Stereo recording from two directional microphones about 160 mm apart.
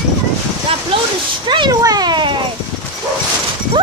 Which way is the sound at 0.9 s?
35° right (ahead or behind).